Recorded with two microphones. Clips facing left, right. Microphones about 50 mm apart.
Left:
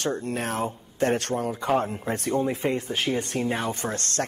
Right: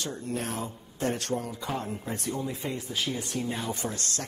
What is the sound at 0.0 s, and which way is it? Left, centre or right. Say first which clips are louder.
Speech: left 6 dB; left.